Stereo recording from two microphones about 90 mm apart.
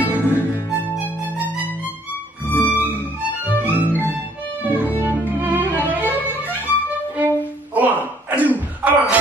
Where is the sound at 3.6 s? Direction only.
20° right (ahead or behind).